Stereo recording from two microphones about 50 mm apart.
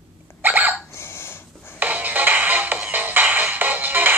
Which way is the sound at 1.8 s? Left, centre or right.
Right.